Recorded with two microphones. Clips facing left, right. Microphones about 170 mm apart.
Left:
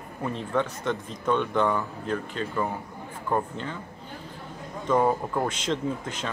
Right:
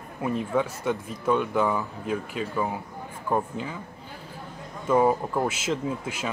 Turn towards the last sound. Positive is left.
turn(degrees=-10)  # may be behind; listen again after turning